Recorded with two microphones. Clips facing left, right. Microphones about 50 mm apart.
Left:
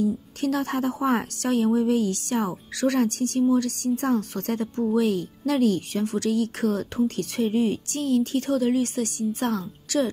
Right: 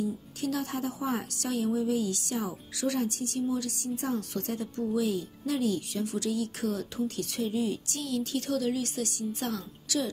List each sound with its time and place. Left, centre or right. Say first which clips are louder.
0.0 s a woman's voice: left 7 dB; left